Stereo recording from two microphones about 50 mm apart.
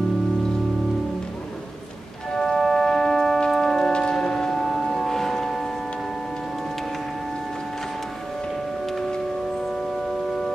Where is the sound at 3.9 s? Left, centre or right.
Centre.